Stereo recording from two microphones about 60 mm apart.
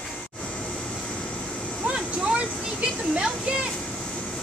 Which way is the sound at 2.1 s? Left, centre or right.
Centre.